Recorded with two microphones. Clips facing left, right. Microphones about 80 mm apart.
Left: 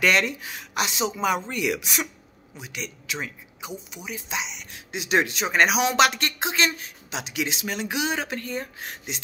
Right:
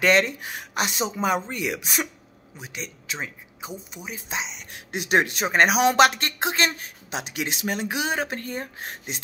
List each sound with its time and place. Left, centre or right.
0.0 s speech: right